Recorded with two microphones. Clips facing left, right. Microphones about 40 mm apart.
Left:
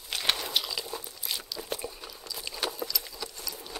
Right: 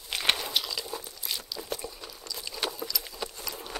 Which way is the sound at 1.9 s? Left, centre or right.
Centre.